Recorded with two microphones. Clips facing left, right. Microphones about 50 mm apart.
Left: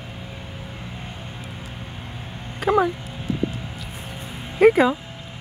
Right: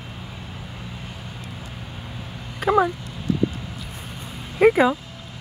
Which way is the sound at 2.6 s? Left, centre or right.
Centre.